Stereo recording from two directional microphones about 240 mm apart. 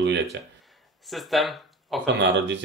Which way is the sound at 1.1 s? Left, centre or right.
Centre.